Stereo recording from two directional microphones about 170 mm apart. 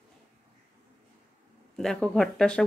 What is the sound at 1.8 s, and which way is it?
Speech, 5° left (ahead or behind).